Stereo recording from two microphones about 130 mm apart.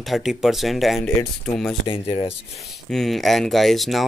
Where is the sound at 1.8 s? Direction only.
45° left (ahead or behind).